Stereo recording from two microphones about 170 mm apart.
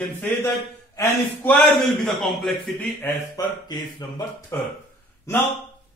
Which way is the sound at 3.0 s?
15° left (ahead or behind).